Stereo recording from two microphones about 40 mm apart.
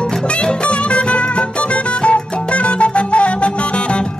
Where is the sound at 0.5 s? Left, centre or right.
Left.